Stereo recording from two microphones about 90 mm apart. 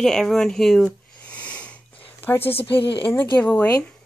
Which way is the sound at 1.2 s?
15° left (ahead or behind).